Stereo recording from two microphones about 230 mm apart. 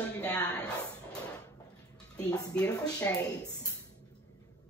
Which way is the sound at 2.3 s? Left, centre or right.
Centre.